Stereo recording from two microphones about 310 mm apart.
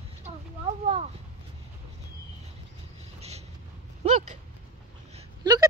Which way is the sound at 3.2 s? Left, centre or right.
Right.